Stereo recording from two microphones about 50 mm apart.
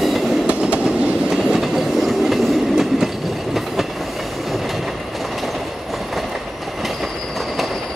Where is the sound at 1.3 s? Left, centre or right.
Centre.